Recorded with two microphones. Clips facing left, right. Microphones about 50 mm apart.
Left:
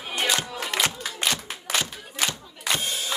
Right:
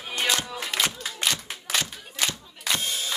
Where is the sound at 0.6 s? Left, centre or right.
Centre.